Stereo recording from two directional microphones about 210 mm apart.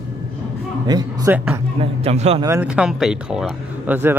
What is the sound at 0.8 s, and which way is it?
A man's voice, 20° right (ahead or behind).